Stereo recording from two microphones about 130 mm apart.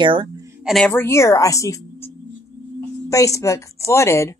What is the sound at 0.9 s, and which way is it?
Speech, 20° left (ahead or behind).